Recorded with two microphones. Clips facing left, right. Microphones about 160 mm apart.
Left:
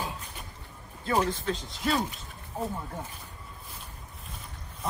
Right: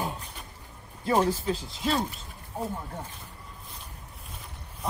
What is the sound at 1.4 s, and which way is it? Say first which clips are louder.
Speech: right 1 dB; 5° right (ahead or behind).